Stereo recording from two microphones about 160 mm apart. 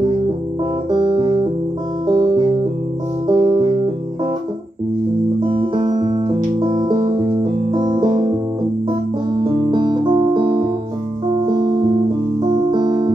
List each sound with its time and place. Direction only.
0.8 s music: 30° right (ahead or behind)
5.4 s music: 30° right (ahead or behind)
12.7 s music: 25° right (ahead or behind)